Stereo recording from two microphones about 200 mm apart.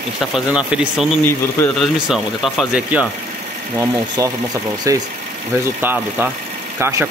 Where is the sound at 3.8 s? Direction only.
15° right (ahead or behind).